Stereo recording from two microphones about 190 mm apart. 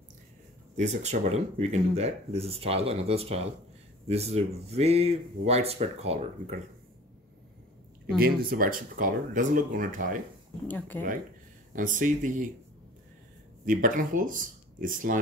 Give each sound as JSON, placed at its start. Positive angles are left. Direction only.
{"t": 0.7, "sound": "speech", "side_deg": -35}
{"t": 8.2, "sound": "speech", "side_deg": -50}
{"t": 10.9, "sound": "speech", "side_deg": 10}
{"t": 11.7, "sound": "speech", "side_deg": -45}
{"t": 13.7, "sound": "speech", "side_deg": -45}